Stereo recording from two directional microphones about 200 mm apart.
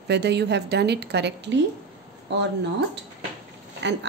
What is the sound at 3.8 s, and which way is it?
Speech, 60° right (ahead or behind).